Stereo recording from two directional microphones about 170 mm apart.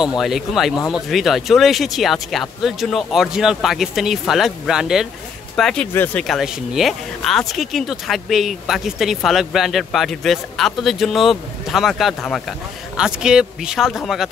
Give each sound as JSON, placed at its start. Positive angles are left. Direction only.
{"t": 0.2, "sound": "speech", "side_deg": 0}